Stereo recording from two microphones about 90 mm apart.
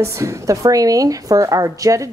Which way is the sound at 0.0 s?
35° right (ahead or behind).